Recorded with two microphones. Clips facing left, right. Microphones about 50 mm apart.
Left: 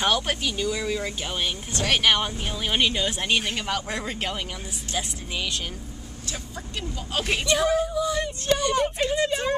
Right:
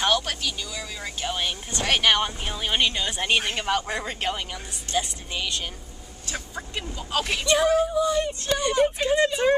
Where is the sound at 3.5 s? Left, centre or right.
Centre.